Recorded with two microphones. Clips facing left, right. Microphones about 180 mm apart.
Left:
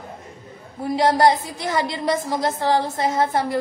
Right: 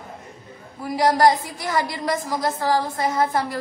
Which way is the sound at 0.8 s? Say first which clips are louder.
Left 1 dB; 25° left (ahead or behind).